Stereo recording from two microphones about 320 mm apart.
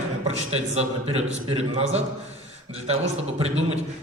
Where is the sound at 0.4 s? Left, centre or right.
Centre.